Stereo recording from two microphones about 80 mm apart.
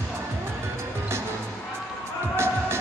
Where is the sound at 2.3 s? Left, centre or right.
Right.